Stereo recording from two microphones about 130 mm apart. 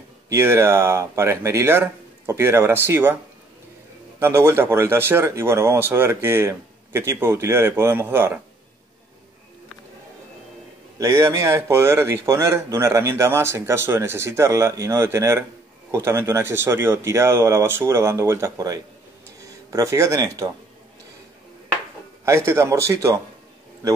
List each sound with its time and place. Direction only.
0.3 s speech: 20° right (ahead or behind)
4.2 s speech: 20° right (ahead or behind)
11.0 s speech: 20° right (ahead or behind)
22.2 s speech: 20° right (ahead or behind)